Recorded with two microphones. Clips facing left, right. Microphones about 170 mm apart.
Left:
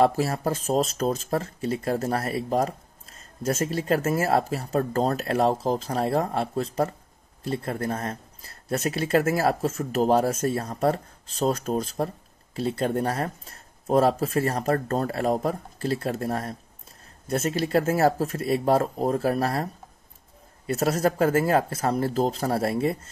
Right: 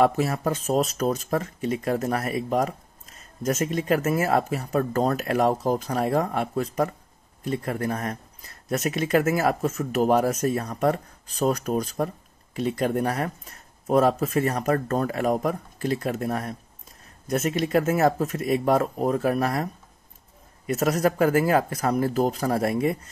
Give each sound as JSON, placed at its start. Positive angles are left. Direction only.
{"t": 0.0, "sound": "speech", "side_deg": 30}
{"t": 7.9, "sound": "speech", "side_deg": 30}